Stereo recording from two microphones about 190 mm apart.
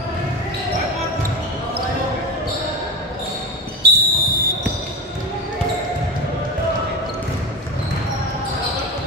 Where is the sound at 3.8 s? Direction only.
55° right (ahead or behind).